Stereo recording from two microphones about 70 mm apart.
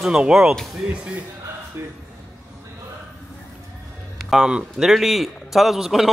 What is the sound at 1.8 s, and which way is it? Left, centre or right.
Speech, right.